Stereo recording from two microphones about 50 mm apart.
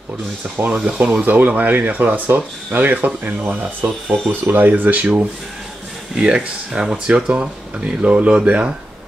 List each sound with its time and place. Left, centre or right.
0.6 s speech: right
1.2 s speech: right